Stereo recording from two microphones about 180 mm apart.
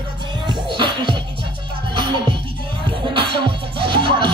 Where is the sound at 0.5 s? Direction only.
25° right (ahead or behind).